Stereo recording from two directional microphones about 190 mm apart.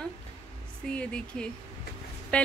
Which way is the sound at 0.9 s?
5° left (ahead or behind).